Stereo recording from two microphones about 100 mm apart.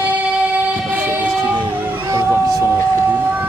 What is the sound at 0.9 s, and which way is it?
Train, 15° right (ahead or behind).